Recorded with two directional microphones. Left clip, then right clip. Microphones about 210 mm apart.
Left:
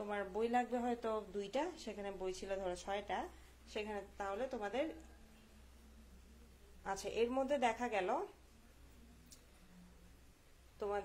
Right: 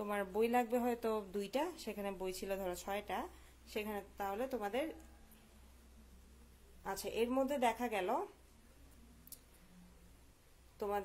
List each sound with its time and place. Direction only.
0.0 s speech: 30° right (ahead or behind)
6.8 s speech: 20° right (ahead or behind)
10.8 s speech: 25° right (ahead or behind)